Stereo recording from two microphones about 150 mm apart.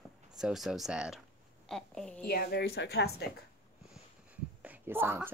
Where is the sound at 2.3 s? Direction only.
90° left.